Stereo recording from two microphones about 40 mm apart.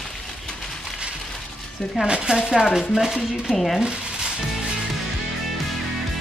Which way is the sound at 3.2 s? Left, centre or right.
Centre.